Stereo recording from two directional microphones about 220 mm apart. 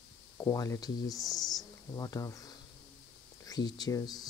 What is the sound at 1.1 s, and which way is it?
Speech, centre (ahead or behind).